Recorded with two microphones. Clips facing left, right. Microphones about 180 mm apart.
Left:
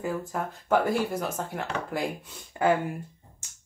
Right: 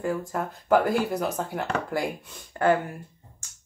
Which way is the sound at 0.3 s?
Centre (ahead or behind).